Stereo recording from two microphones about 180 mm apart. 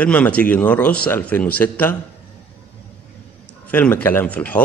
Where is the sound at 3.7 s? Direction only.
10° left (ahead or behind).